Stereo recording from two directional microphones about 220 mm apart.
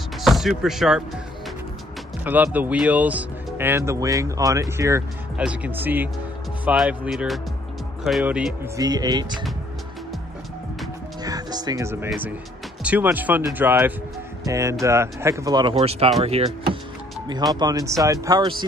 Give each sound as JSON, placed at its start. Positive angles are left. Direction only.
{"t": 0.2, "sound": "speech", "side_deg": 0}
{"t": 2.2, "sound": "speech", "side_deg": -10}
{"t": 8.7, "sound": "speech", "side_deg": -15}
{"t": 11.2, "sound": "music", "side_deg": -15}
{"t": 12.1, "sound": "speech", "side_deg": -5}
{"t": 17.6, "sound": "speech", "side_deg": -15}